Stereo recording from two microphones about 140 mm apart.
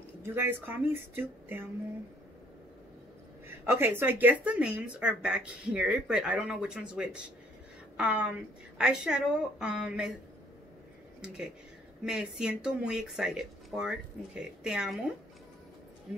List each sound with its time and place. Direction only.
0.2 s speech: 15° right (ahead or behind)
3.4 s speech: 15° right (ahead or behind)
11.1 s speech: 5° right (ahead or behind)